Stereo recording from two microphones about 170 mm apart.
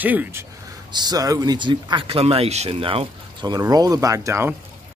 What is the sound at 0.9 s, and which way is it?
Speech, 25° right (ahead or behind).